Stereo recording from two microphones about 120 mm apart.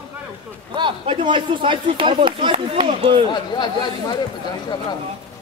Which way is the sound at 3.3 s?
35° left (ahead or behind).